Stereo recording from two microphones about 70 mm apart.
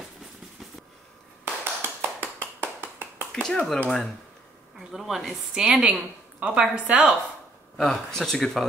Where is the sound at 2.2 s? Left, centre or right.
Centre.